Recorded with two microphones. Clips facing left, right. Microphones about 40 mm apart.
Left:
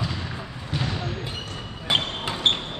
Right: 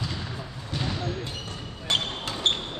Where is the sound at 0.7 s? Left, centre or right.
Centre.